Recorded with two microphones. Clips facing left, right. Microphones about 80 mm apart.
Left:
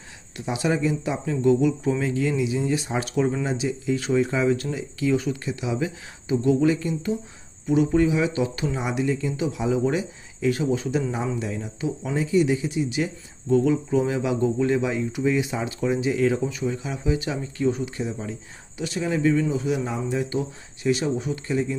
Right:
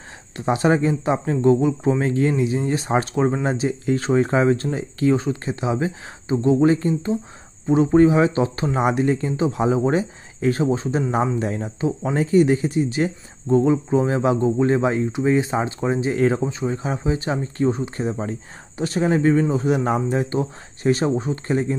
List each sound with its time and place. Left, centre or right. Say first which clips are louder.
0.4 s speech: right 5 dB; right
2.0 s speech: right 4 dB; right